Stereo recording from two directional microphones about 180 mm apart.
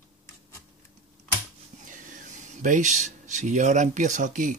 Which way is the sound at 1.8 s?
45° right (ahead or behind).